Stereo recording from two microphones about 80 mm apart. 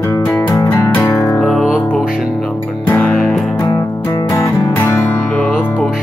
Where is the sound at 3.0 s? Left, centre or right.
Centre.